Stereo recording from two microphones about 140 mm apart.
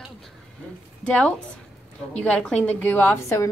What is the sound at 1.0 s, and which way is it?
A woman's voice, 5° left (ahead or behind).